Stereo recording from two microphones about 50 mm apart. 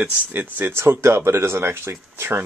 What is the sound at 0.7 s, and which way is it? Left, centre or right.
Speech, right.